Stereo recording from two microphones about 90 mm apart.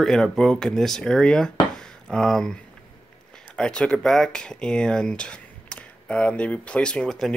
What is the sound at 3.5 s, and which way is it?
Speech, 10° left (ahead or behind).